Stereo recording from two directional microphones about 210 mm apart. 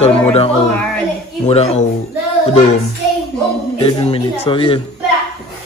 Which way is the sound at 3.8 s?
25° left (ahead or behind).